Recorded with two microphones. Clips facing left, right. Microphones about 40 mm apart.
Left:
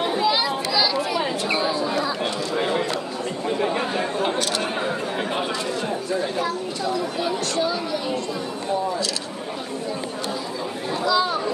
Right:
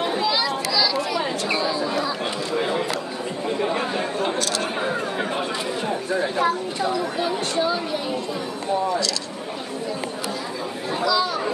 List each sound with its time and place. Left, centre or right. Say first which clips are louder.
0.0 s chatter: left 1 dB; centre
1.9 s chatter: left 1 dB; centre
4.4 s chatter: even; left
4.7 s chatter: right 1 dB; centre
6.1 s speech: right 5 dB; right
11.1 s speech: left 1 dB; centre